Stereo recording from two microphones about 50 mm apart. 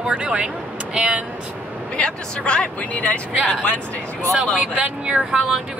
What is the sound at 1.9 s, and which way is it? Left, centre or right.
Speech, centre.